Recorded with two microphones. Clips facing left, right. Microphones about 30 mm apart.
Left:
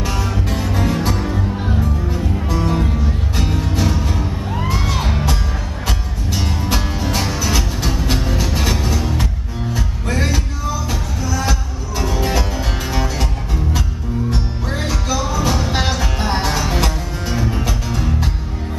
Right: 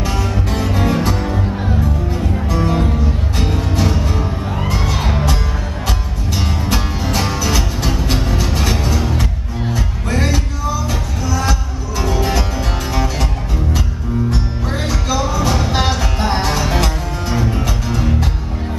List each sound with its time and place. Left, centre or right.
0.0 s music: centre
14.3 s music: centre